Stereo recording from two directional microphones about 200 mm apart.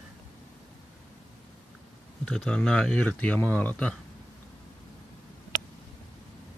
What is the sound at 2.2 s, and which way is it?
Speech, 5° left (ahead or behind).